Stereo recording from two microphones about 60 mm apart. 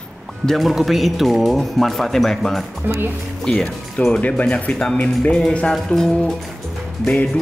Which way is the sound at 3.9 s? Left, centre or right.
Centre.